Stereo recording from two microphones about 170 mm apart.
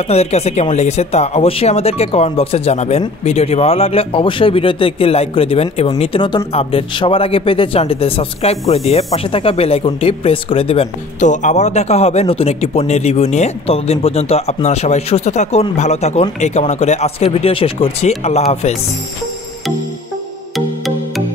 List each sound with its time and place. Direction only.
0.1 s speech: 40° left (ahead or behind)